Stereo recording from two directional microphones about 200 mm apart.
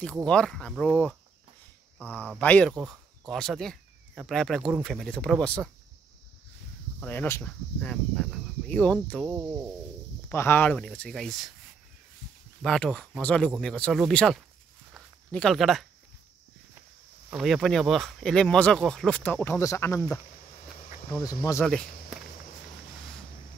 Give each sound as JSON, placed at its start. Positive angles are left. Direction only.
{"t": 0.0, "sound": "speech", "side_deg": 5}
{"t": 2.1, "sound": "speech", "side_deg": 5}
{"t": 7.0, "sound": "speech", "side_deg": 10}
{"t": 10.3, "sound": "speech", "side_deg": 10}
{"t": 12.6, "sound": "speech", "side_deg": 5}
{"t": 15.0, "sound": "a sound", "side_deg": 0}
{"t": 17.3, "sound": "speech", "side_deg": 0}
{"t": 21.6, "sound": "speech", "side_deg": 5}